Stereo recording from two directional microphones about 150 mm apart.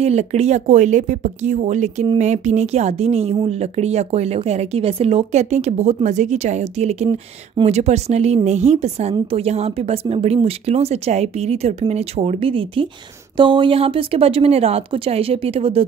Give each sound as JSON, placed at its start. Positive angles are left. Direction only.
{"t": 0.0, "sound": "a woman's voice", "side_deg": -45}